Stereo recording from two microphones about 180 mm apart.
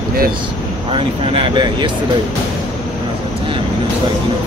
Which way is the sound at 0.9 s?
30° right (ahead or behind).